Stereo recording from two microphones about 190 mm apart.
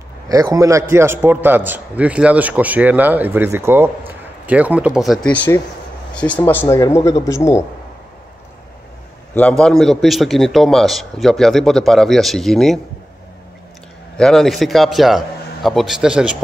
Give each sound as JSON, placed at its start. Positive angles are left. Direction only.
{"t": 0.3, "sound": "a man's voice", "side_deg": -15}
{"t": 9.3, "sound": "a man's voice", "side_deg": 5}
{"t": 14.1, "sound": "a man's voice", "side_deg": 5}